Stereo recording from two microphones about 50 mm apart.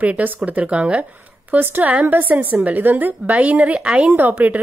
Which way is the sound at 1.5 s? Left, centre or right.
Right.